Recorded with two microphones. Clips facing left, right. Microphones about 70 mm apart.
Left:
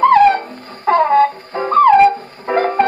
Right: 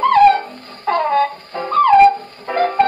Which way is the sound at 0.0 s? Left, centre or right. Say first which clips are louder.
Left 1 dB; centre.